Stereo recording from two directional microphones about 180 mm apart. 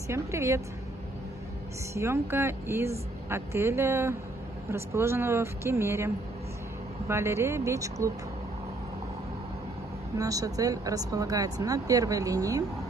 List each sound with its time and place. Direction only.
0.1 s speech: 15° right (ahead or behind)
2.0 s speech: 15° right (ahead or behind)
10.1 s speech: 20° right (ahead or behind)